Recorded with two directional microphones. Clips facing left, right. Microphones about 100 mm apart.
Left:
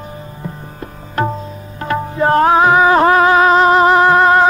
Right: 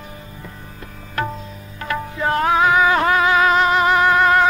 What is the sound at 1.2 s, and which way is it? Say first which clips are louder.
Tabla: left 6 dB; 30° left (ahead or behind).